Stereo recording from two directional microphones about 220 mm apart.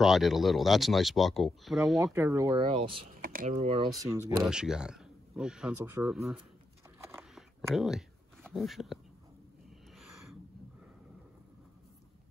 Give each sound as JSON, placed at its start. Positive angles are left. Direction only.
{"t": 0.0, "sound": "speech", "side_deg": 0}
{"t": 2.1, "sound": "speech", "side_deg": -15}
{"t": 3.2, "sound": "speech", "side_deg": -40}
{"t": 3.5, "sound": "speech", "side_deg": -25}
{"t": 4.0, "sound": "speech", "side_deg": -15}
{"t": 7.0, "sound": "a sound", "side_deg": -10}
{"t": 8.5, "sound": "speech", "side_deg": 0}